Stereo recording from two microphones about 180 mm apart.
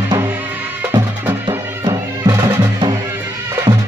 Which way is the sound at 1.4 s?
20° right (ahead or behind).